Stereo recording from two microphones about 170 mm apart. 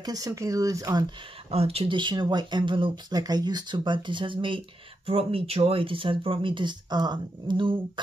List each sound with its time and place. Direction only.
0.0 s speech: 20° right (ahead or behind)
1.5 s speech: 35° right (ahead or behind)